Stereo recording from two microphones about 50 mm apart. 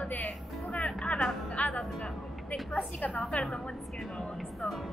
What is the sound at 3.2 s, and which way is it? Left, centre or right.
Speech, left.